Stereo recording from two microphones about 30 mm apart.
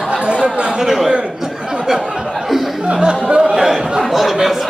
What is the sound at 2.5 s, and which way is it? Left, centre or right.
Chuckle, centre.